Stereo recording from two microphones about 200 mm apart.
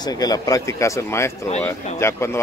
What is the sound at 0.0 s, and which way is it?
Speech, 20° left (ahead or behind).